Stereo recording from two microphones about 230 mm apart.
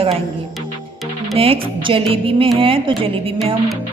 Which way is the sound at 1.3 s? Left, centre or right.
Right.